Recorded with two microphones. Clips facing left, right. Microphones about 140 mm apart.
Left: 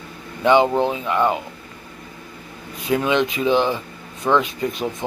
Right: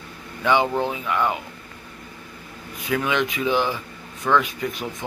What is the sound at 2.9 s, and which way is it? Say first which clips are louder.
Speech: left 4 dB; 25° left (ahead or behind).